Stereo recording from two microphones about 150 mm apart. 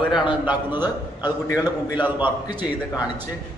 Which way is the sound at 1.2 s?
25° left (ahead or behind).